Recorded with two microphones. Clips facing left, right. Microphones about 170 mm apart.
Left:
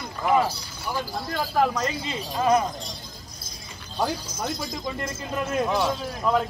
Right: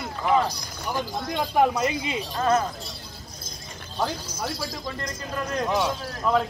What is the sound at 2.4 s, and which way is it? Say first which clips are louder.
Speech: left 2 dB; 10° left (ahead or behind).